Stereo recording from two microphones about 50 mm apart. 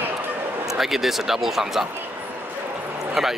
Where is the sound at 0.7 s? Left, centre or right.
Centre.